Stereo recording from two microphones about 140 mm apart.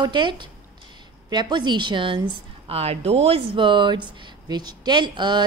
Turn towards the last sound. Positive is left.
turn(degrees=-35)  # may be behind; listen again after turning